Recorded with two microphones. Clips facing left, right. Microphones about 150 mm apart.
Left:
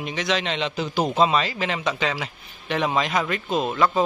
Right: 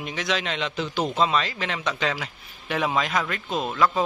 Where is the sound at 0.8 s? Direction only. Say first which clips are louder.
Left 2 dB; 40° left (ahead or behind).